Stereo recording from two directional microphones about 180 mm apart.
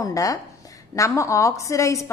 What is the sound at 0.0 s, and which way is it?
A woman's voice, 20° left (ahead or behind).